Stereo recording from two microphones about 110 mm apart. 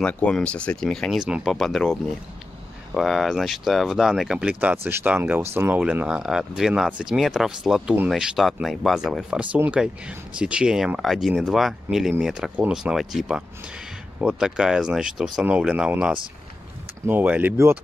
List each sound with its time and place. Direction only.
0.0 s speech: 10° left (ahead or behind)
1.1 s speech: 5° right (ahead or behind); by 5.8 s 20° right (ahead or behind)
5.8 s speech: 10° right (ahead or behind)